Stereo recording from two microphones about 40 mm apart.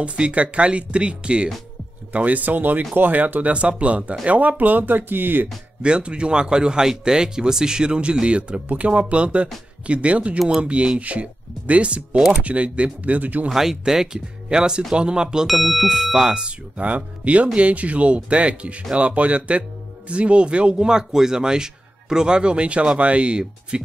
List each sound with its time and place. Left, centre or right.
0.0 s speech: right
2.1 s speech: right
3.5 s speech: right
5.8 s speech: right
13.5 s speech: centre
15.4 s speech: centre; by 23.8 s right